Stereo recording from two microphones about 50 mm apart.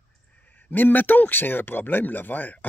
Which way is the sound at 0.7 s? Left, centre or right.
Left.